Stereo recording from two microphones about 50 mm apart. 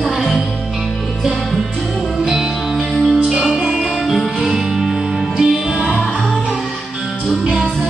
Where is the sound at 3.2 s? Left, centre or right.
Centre.